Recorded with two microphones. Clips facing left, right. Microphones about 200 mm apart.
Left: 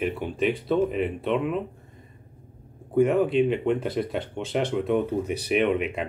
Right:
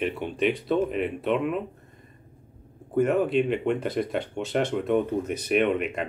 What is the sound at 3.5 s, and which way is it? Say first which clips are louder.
Speech: left 1 dB; centre (ahead or behind).